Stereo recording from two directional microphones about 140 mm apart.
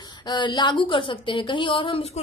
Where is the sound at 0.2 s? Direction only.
30° left (ahead or behind).